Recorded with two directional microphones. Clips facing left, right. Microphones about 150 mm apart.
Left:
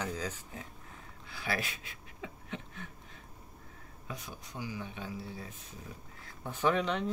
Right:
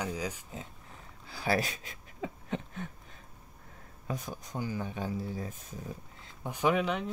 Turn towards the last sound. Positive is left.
turn(degrees=-5)  # may be behind; listen again after turning